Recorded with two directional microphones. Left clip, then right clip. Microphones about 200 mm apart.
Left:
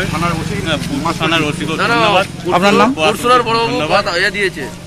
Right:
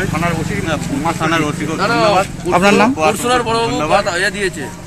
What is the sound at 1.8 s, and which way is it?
Speech, 55° right (ahead or behind).